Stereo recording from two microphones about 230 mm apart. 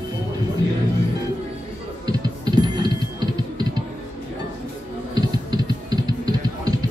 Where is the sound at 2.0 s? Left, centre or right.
Centre.